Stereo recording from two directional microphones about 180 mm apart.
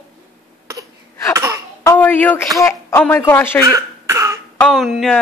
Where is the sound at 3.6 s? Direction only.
15° right (ahead or behind).